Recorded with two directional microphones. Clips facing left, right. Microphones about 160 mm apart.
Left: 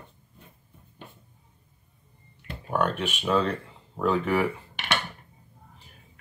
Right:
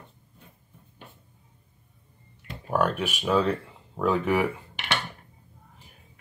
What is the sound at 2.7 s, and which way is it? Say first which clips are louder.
Speech: right 1 dB; 10° right (ahead or behind).